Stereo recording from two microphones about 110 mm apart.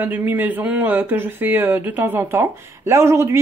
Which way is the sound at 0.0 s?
15° right (ahead or behind).